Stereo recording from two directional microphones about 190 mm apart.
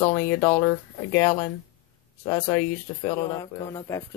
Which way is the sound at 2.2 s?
10° left (ahead or behind).